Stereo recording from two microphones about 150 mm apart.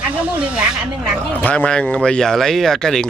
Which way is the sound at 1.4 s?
10° left (ahead or behind).